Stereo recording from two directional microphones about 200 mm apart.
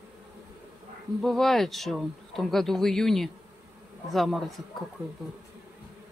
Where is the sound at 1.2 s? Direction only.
Centre (ahead or behind).